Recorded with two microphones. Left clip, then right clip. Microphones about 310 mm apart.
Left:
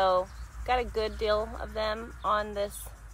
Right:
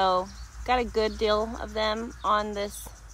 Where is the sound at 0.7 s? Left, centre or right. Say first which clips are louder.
Right 3 dB; right.